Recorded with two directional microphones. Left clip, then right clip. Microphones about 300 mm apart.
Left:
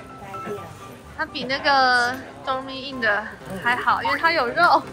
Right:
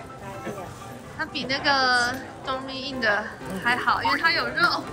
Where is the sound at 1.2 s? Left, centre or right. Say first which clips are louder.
Left 2 dB; centre.